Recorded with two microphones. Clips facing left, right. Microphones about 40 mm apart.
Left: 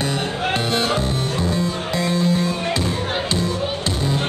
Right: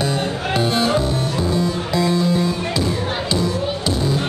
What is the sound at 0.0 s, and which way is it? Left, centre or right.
Music, left.